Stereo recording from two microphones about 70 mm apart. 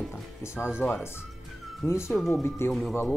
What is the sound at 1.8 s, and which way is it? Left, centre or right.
Speech, left.